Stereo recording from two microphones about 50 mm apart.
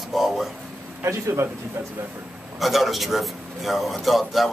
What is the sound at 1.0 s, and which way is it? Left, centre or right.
Speech, right.